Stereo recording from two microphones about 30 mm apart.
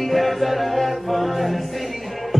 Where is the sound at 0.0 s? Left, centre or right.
Centre.